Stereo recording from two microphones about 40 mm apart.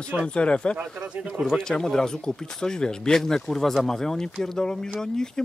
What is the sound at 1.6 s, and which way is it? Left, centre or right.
Speech, centre.